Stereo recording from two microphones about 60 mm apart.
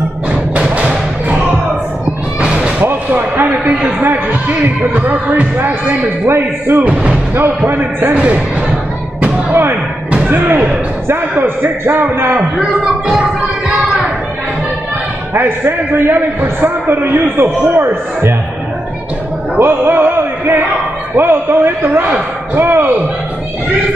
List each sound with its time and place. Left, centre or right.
0.3 s music: centre
2.0 s a sound: centre
2.8 s a sound: right
6.2 s a man's voice: right
6.8 s speech: centre
7.3 s a man's voice: right
10.1 s slam: right
11.1 s a man's voice: right
15.3 s a man's voice: right
19.6 s music: right
21.2 s a man's voice: right